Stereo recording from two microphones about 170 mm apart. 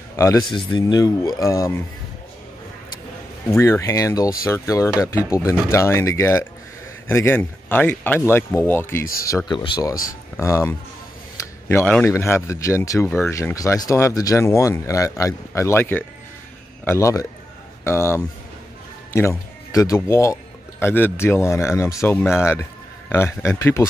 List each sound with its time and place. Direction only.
0.1 s speech: 15° left (ahead or behind)
0.5 s speech: 30° left (ahead or behind)
3.5 s speech: 15° left (ahead or behind)
9.0 s speech: 60° left (ahead or behind)
9.5 s speech: 25° left (ahead or behind)